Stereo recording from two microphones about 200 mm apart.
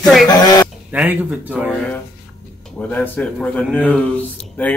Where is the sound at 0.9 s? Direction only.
5° right (ahead or behind).